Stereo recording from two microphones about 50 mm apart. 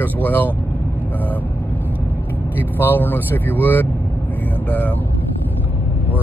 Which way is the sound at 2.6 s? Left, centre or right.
Left.